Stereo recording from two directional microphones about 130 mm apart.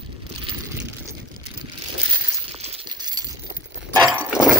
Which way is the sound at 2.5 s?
50° right (ahead or behind).